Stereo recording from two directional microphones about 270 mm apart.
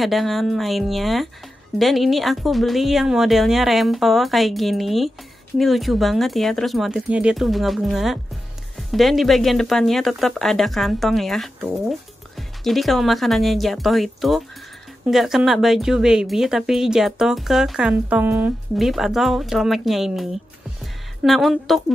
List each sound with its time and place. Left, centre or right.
0.0 s a woman's voice: centre